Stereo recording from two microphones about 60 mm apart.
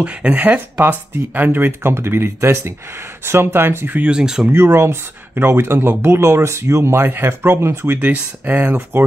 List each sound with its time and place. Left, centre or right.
0.0 s speech: right
4.0 s speech: centre
4.6 s speech: right
8.0 s speech: right
8.9 s speech: right